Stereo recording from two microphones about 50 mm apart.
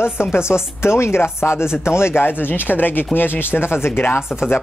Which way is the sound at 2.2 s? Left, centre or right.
Left.